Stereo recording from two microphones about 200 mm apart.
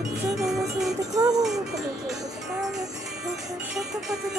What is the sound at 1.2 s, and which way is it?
Music, 20° right (ahead or behind).